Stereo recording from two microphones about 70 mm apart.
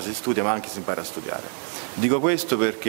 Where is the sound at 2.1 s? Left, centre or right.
Centre.